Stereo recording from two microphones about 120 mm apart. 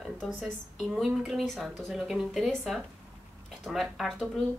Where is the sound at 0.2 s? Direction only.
5° left (ahead or behind).